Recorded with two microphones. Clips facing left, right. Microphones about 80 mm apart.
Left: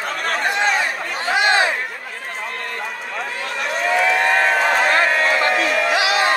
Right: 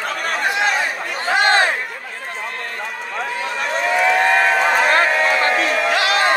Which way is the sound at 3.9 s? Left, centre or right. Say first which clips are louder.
Right 2 dB; centre.